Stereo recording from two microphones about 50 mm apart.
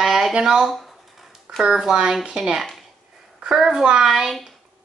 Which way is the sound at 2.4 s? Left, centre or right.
Centre.